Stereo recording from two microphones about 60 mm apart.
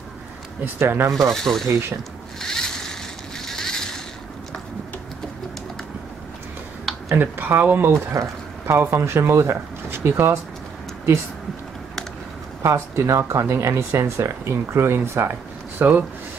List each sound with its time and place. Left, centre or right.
0.7 s speech: right
1.1 s speech: centre
2.4 s a sound: centre
7.2 s speech: right
8.1 s speech: right
12.7 s speech: right
15.8 s speech: right